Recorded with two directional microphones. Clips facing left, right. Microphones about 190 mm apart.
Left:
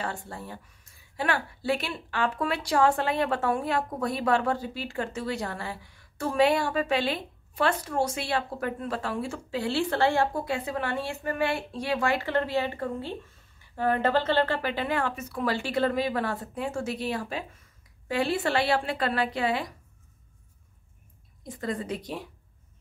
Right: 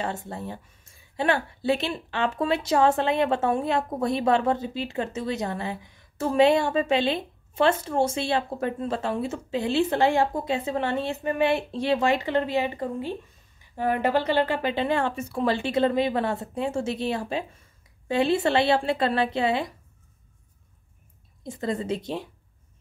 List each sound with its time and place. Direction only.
0.0 s a woman's voice: 20° right (ahead or behind)
21.5 s a woman's voice: 25° right (ahead or behind)